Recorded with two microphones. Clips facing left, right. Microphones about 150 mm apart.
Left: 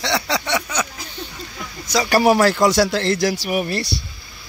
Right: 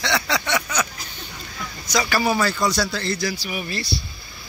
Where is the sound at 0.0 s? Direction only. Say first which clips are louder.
Left 2 dB; 35° left (ahead or behind).